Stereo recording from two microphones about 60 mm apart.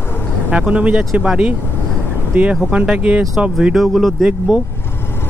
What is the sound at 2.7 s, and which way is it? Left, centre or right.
Speech, centre.